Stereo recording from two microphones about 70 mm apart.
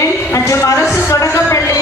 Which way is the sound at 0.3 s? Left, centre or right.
Left.